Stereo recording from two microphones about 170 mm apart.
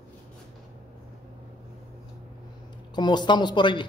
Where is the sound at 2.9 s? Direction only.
25° left (ahead or behind).